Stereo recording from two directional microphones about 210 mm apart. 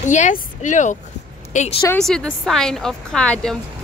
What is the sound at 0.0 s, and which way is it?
A woman's voice, 35° left (ahead or behind).